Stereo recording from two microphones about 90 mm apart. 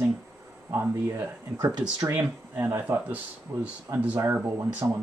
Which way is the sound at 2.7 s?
25° right (ahead or behind).